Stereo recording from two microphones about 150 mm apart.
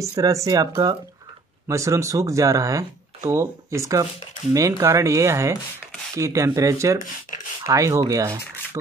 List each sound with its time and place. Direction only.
0.0 s speech: 20° right (ahead or behind)